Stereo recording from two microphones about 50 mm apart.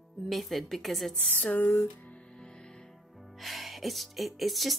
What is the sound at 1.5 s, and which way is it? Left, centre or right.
Music, left.